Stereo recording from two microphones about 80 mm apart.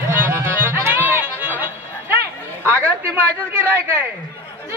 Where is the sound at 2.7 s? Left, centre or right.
Right.